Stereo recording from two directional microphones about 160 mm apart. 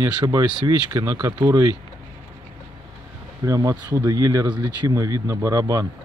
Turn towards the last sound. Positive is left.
turn(degrees=-20)  # may be behind; listen again after turning